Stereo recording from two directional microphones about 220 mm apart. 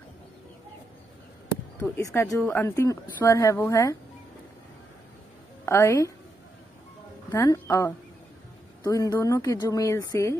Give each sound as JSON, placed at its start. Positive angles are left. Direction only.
{"t": 1.8, "sound": "speech", "side_deg": 15}
{"t": 5.7, "sound": "speech", "side_deg": 15}
{"t": 7.2, "sound": "speech", "side_deg": 15}